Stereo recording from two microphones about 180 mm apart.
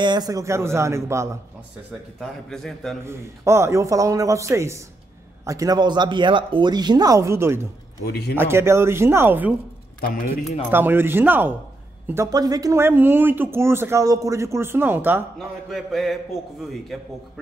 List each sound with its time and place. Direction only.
0.0 s speech: 25° right (ahead or behind)
2.1 s a sound: 5° left (ahead or behind)
3.1 s speech: 15° right (ahead or behind)
8.0 s a man's voice: 60° left (ahead or behind)
8.4 s speech: 15° right (ahead or behind)
10.7 s speech: 10° right (ahead or behind)
15.3 s a sound: centre (ahead or behind)